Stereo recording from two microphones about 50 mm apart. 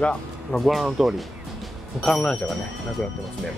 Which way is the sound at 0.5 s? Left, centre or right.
Centre.